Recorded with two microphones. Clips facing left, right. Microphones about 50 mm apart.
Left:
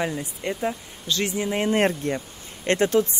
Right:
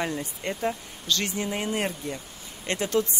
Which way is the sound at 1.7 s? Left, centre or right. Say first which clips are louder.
Left 7 dB; left.